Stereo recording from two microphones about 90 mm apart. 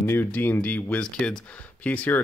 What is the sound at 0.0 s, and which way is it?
Speech, 25° left (ahead or behind).